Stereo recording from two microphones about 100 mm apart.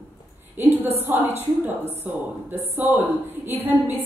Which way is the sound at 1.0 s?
20° right (ahead or behind).